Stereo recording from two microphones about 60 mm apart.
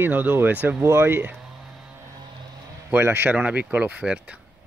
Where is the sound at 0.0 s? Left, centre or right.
Right.